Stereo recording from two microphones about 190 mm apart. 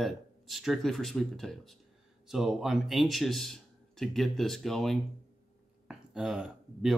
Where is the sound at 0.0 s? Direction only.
Centre (ahead or behind).